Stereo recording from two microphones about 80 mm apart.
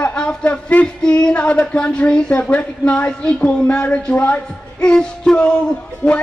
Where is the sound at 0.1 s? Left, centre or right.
Centre.